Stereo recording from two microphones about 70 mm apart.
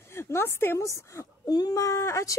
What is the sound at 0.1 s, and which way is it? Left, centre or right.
Speech, left.